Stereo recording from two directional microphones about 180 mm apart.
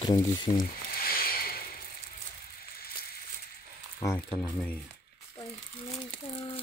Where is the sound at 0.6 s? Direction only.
55° left (ahead or behind).